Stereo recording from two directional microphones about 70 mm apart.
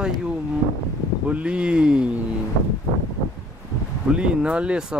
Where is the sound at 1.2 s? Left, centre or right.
Centre.